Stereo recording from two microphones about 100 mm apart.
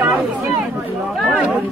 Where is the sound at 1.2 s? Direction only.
10° right (ahead or behind).